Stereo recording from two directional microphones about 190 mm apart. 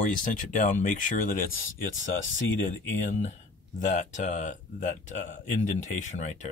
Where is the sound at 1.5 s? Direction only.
90° left.